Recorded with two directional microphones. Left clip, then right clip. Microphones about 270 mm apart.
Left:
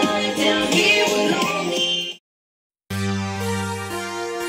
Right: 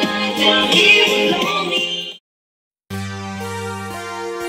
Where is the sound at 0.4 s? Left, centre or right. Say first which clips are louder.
Right 7 dB; centre.